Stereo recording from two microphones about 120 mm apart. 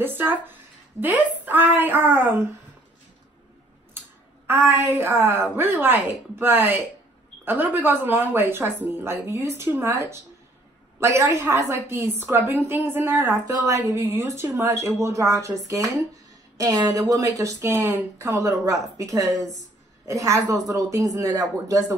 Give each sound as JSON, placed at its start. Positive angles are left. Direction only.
{"t": 0.0, "sound": "a woman's voice", "side_deg": -15}
{"t": 4.5, "sound": "a woman's voice", "side_deg": -20}